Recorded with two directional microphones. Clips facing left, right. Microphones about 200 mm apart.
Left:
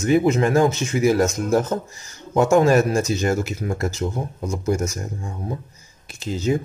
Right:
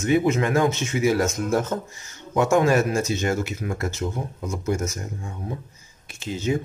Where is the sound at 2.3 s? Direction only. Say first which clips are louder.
Left 3 dB; 35° left (ahead or behind).